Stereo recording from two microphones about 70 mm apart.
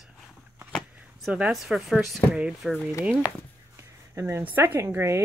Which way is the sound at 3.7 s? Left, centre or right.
Right.